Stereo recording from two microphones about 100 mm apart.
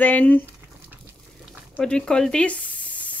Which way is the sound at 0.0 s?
15° left (ahead or behind).